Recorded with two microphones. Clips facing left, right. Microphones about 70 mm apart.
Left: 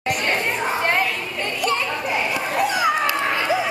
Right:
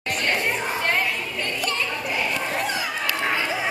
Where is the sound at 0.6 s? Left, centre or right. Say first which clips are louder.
Left 3 dB; centre.